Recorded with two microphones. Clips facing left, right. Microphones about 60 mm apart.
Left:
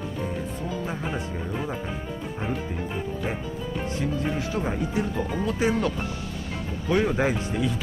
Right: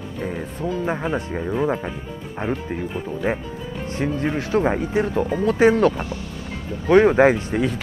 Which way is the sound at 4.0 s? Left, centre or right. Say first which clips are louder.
Right 7 dB; right.